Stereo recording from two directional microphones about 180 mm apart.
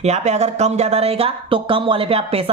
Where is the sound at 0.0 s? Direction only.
40° right (ahead or behind).